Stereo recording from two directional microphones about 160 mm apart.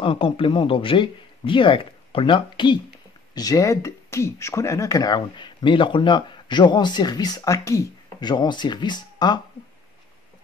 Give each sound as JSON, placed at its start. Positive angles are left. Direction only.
{"t": 0.0, "sound": "speech", "side_deg": 35}